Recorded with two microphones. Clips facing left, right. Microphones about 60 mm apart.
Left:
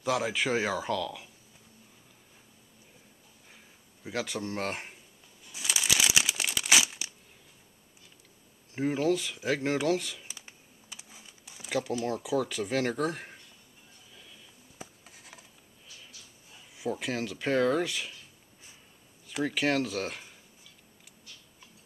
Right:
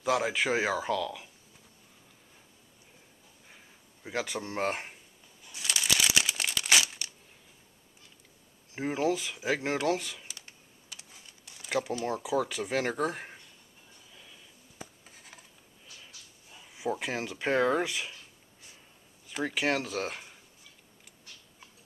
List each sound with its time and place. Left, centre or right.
0.0 s speech: centre
3.4 s a sound: centre
5.5 s crumpling: centre
8.7 s speech: centre
10.2 s computer keyboard: centre
12.2 s speech: centre
14.1 s a sound: centre
16.7 s speech: centre
19.2 s speech: centre